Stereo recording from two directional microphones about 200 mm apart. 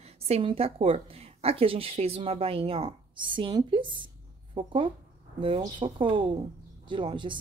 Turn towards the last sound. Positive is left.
turn(degrees=-25)  # may be behind; listen again after turning